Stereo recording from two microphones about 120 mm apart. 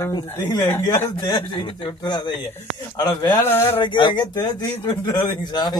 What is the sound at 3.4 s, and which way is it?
Speech, 20° left (ahead or behind).